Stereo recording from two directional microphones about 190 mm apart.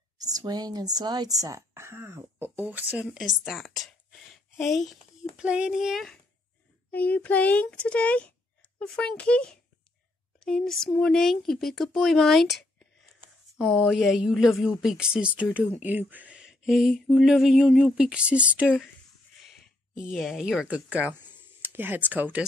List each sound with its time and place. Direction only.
0.2 s speech: 20° right (ahead or behind)
3.4 s a sound: centre (ahead or behind)
5.4 s a child's voice: 5° right (ahead or behind)
13.6 s speech: centre (ahead or behind)
20.0 s speech: centre (ahead or behind)